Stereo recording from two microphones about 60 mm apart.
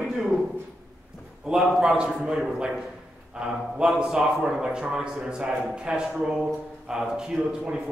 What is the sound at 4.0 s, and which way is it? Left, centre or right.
A man's voice, centre.